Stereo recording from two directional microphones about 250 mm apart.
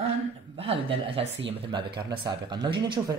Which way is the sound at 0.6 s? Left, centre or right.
Right.